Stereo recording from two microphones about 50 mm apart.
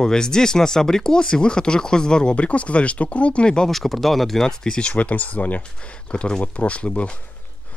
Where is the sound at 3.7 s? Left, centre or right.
Centre.